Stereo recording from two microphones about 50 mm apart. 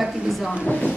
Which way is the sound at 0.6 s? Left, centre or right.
Left.